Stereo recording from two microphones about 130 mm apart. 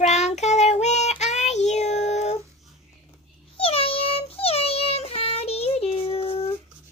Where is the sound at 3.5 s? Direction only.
45° left (ahead or behind).